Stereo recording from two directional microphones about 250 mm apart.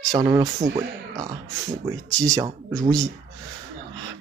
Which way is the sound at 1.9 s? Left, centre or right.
Centre.